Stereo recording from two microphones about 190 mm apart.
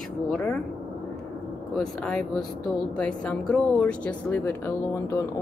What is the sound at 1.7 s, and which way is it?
Speech, 5° left (ahead or behind).